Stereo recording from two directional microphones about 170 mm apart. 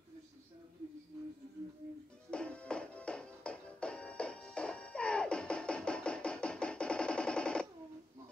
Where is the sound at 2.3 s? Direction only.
5° left (ahead or behind).